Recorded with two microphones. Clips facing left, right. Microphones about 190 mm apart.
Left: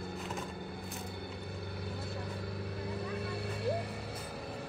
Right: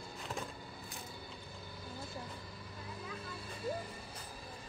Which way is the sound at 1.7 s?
65° left (ahead or behind).